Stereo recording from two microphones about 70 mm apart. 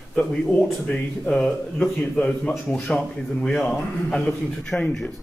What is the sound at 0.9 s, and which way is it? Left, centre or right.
A man's voice, centre.